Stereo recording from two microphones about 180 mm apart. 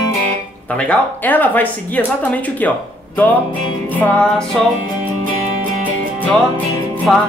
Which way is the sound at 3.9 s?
10° left (ahead or behind).